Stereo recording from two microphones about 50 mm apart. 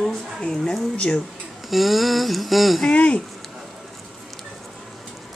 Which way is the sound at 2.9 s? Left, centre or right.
Left.